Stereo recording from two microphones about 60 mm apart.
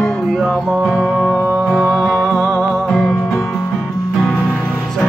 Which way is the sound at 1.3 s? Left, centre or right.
Centre.